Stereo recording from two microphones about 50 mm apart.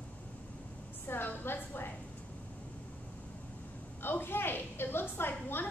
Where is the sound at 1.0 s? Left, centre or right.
Left.